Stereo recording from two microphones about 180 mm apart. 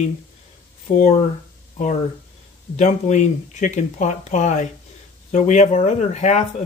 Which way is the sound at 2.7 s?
40° left (ahead or behind).